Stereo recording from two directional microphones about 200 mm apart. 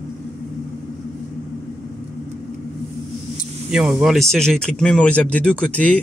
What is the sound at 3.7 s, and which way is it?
A man's voice, 5° right (ahead or behind).